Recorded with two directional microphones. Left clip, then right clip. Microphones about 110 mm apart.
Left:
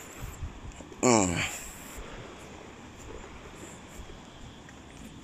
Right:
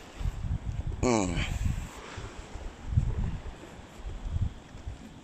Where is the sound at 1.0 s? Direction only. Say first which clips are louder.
Left 4 dB; 5° left (ahead or behind).